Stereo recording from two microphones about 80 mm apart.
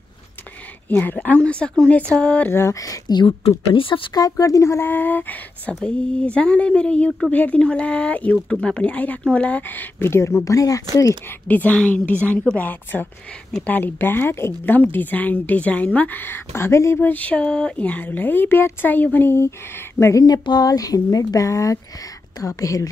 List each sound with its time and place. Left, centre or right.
0.8 s speech: left
2.7 s speech: left
3.2 s speech: left
4.1 s speech: left
11.2 s speech: left
17.1 s speech: centre; by 20.2 s left
20.2 s speech: left